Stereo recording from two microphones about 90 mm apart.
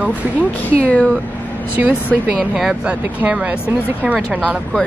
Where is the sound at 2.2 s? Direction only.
10° right (ahead or behind).